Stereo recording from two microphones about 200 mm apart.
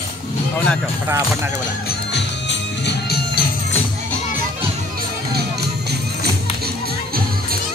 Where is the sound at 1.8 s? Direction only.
60° left (ahead or behind).